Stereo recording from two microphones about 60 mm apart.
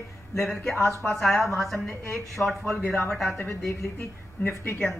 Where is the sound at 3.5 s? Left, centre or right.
Left.